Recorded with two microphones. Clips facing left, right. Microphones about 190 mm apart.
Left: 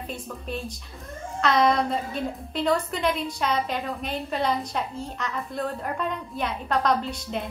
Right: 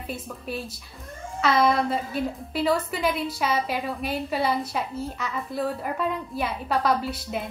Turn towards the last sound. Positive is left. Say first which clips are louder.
# even
turn(degrees=-5)  # may be behind; listen again after turning